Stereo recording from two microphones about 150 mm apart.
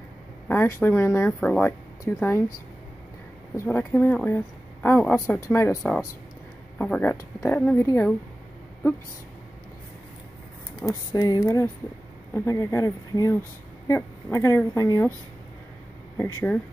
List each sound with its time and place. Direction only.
0.5 s speech: 15° left (ahead or behind)
3.5 s speech: 10° left (ahead or behind)
6.8 s speech: 10° left (ahead or behind)
10.9 s speech: 25° left (ahead or behind)
16.2 s speech: 10° left (ahead or behind)